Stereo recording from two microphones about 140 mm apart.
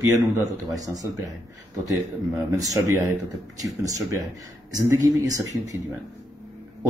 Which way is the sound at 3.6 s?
25° right (ahead or behind).